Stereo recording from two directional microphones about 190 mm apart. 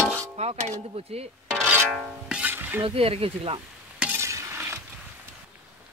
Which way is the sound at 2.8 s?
30° right (ahead or behind).